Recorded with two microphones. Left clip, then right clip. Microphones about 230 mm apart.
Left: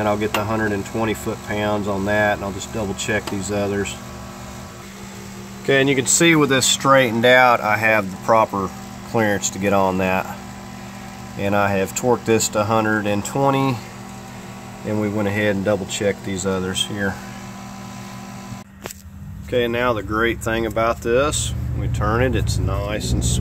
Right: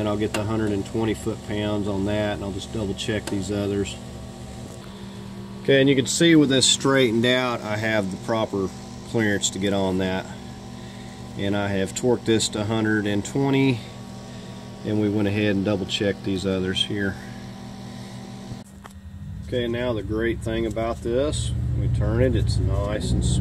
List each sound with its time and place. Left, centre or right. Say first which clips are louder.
0.0 s speech: left 5 dB; centre
5.7 s speech: left 1 dB; centre
6.1 s speech: left 3 dB; left
11.3 s speech: left 7 dB; centre
14.9 s speech: left 1 dB; centre
16.5 s speech: left 1 dB; centre
19.5 s speech: left 6 dB; centre